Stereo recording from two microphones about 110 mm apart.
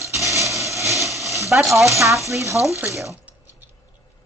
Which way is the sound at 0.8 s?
Centre (ahead or behind).